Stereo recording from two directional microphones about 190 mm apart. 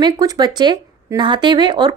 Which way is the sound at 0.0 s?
20° right (ahead or behind).